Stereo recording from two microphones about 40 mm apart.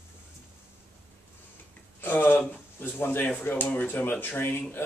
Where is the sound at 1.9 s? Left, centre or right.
Left.